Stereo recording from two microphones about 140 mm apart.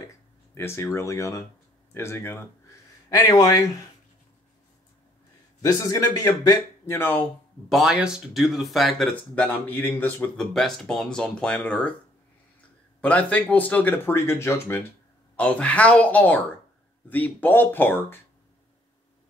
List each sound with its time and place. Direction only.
0.6 s speech: 20° left (ahead or behind)
5.6 s speech: 25° left (ahead or behind)
7.7 s speech: 5° right (ahead or behind)
13.0 s speech: 10° left (ahead or behind)